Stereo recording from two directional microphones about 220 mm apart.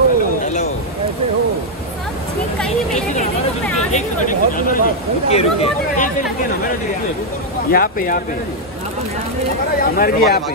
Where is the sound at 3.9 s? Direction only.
35° left (ahead or behind).